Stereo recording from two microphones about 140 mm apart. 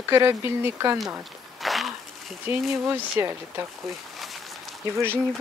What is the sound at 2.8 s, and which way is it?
Speech, 10° right (ahead or behind).